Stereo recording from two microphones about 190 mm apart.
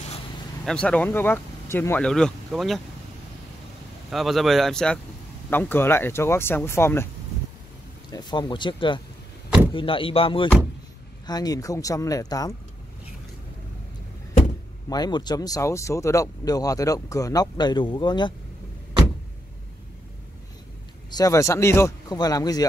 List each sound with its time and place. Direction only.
0.7 s speech: 5° left (ahead or behind)
4.1 s speech: centre (ahead or behind)
8.1 s speech: 20° left (ahead or behind)
14.9 s speech: 20° left (ahead or behind)
21.1 s speech: 20° left (ahead or behind)